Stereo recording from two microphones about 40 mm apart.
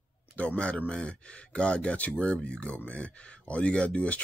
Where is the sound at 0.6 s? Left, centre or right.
Left.